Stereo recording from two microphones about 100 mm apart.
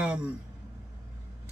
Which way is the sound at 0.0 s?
10° right (ahead or behind).